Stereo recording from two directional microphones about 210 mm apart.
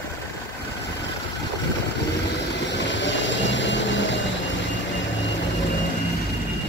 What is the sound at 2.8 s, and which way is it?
Vehicle, 60° left (ahead or behind).